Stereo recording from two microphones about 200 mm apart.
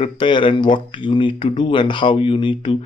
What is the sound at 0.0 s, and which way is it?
Speech, 25° left (ahead or behind).